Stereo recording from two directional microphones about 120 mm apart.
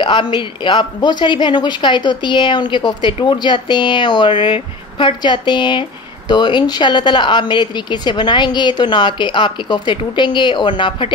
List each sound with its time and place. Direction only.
0.0 s speech: 40° left (ahead or behind)